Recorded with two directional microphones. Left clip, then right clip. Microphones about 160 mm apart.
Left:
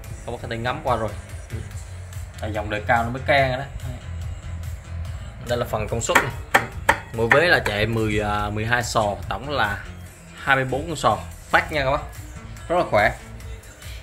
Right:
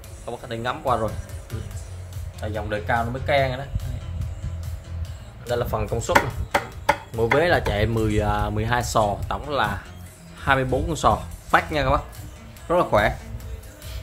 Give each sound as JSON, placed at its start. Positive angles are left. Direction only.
{"t": 0.2, "sound": "speech", "side_deg": -30}
{"t": 2.4, "sound": "speech", "side_deg": 0}
{"t": 5.5, "sound": "a man's voice", "side_deg": -10}